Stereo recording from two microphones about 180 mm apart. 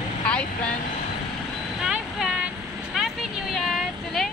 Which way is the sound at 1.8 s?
5° right (ahead or behind).